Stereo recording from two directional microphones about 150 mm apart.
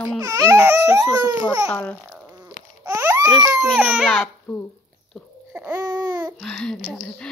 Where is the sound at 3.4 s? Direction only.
20° right (ahead or behind).